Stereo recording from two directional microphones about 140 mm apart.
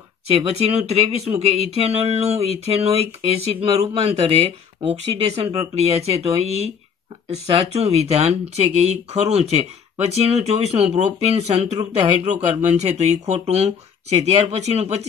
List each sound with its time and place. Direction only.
0.3 s speech: 45° right (ahead or behind)